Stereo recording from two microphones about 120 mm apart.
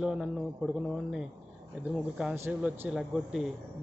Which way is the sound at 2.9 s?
5° right (ahead or behind).